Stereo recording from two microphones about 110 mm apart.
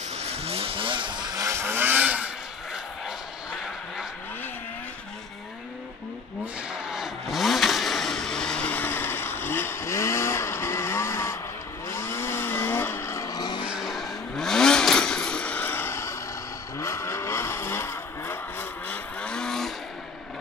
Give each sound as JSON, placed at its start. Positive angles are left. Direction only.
{"t": 0.1, "sound": "vehicle", "side_deg": -70}
{"t": 6.4, "sound": "vehicle", "side_deg": -5}
{"t": 13.7, "sound": "vehicle", "side_deg": 0}